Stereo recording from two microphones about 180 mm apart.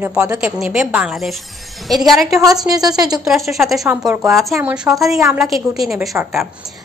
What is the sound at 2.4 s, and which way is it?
Speech, 20° right (ahead or behind).